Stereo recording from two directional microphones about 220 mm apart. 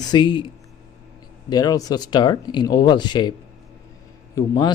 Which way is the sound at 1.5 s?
15° left (ahead or behind).